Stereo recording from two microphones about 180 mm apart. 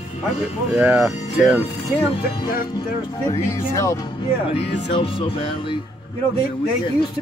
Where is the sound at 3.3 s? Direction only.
15° left (ahead or behind).